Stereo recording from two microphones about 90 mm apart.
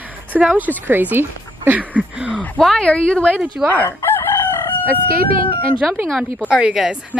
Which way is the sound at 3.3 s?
20° right (ahead or behind).